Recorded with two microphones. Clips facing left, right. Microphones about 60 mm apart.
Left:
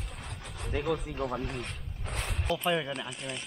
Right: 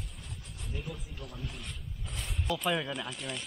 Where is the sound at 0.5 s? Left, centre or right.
Left.